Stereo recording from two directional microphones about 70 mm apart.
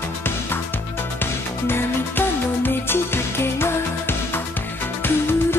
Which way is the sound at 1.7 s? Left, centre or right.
Left.